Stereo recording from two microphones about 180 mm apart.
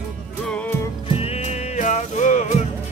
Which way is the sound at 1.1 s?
35° left (ahead or behind).